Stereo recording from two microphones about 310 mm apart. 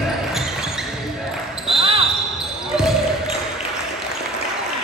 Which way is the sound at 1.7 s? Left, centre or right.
Centre.